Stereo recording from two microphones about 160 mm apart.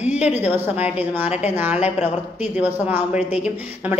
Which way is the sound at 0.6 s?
10° right (ahead or behind).